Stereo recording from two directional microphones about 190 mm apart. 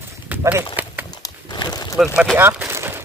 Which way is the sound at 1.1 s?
20° left (ahead or behind).